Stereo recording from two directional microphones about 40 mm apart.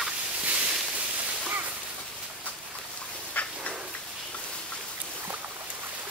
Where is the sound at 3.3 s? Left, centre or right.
Left.